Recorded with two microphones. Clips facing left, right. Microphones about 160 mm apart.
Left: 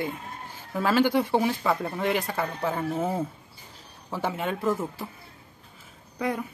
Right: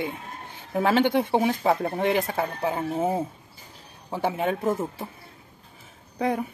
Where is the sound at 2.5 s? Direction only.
20° right (ahead or behind).